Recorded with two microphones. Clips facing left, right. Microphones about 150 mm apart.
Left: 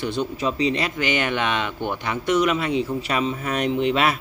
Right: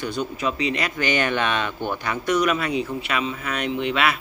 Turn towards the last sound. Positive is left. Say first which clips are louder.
# left 2 dB
turn(degrees=35)  # may be behind; listen again after turning